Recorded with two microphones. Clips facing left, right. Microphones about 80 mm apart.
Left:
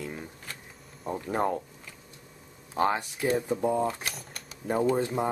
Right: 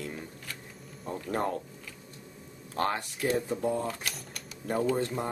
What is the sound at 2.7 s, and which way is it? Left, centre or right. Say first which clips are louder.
Speech: left 4 dB; centre.